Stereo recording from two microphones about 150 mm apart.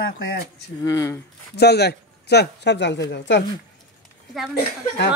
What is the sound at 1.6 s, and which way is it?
Speech, 90° left.